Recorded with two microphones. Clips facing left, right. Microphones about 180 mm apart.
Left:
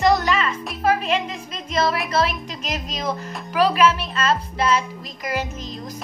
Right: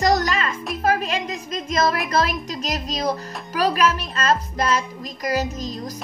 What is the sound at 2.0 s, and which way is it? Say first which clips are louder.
Speech: even; 40° right (ahead or behind).